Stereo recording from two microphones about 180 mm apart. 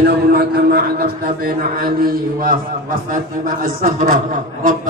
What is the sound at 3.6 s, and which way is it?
A man's voice, 50° right (ahead or behind).